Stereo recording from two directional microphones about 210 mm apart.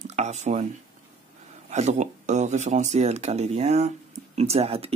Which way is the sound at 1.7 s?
35° right (ahead or behind).